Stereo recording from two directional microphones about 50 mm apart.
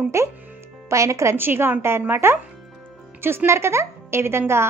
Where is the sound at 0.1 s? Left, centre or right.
Right.